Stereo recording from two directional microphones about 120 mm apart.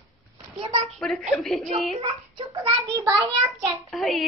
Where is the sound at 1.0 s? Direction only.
5° left (ahead or behind).